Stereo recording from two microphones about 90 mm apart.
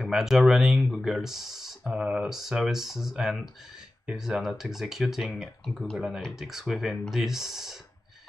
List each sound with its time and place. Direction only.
0.0 s speech: 5° right (ahead or behind)